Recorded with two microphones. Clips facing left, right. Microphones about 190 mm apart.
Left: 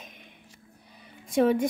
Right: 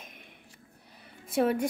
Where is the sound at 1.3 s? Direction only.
5° right (ahead or behind).